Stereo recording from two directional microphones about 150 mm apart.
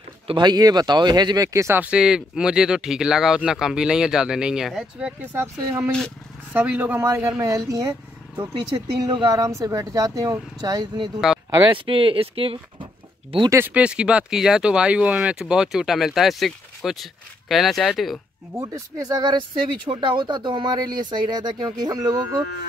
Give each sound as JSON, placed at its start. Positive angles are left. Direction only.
{"t": 0.3, "sound": "speech", "side_deg": -30}
{"t": 5.9, "sound": "speech", "side_deg": 5}
{"t": 6.5, "sound": "speech", "side_deg": -10}
{"t": 9.0, "sound": "speech", "side_deg": -30}
{"t": 13.5, "sound": "speech", "side_deg": -15}
{"t": 18.6, "sound": "speech", "side_deg": -25}